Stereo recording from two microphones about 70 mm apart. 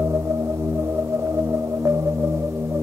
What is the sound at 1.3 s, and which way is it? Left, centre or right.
Music, right.